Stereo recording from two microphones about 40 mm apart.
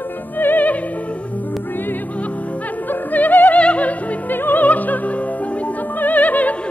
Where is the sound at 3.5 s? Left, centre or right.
Left.